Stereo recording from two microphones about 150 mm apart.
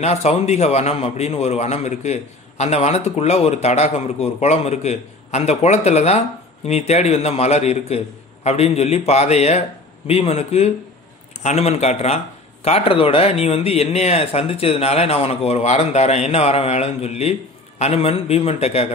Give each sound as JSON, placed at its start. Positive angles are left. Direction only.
{"t": 0.0, "sound": "a man's voice", "side_deg": 45}